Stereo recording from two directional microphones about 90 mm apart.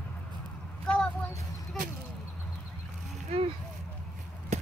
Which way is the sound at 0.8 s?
10° left (ahead or behind).